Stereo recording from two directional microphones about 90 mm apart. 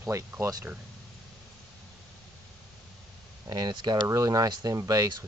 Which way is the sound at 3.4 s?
50° right (ahead or behind).